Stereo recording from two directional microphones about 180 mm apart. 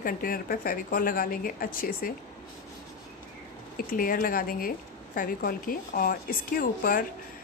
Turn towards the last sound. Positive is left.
turn(degrees=55)  # may be behind; listen again after turning